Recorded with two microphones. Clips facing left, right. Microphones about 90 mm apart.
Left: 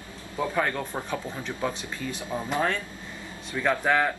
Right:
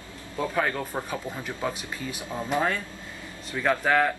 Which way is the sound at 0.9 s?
15° right (ahead or behind).